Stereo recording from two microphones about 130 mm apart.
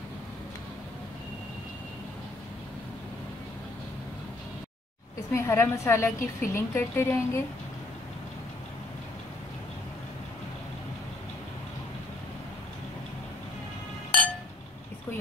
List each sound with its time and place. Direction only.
5.3 s a woman's voice: 20° left (ahead or behind)